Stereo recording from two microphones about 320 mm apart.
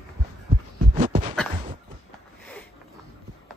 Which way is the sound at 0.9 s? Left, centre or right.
Right.